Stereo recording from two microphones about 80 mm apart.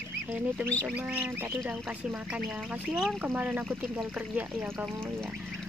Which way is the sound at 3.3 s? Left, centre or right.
Centre.